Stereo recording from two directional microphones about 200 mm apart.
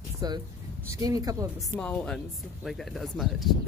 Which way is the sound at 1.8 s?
5° left (ahead or behind).